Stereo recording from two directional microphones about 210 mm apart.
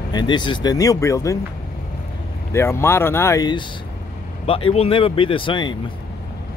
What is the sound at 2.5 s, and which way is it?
Speech, 10° left (ahead or behind).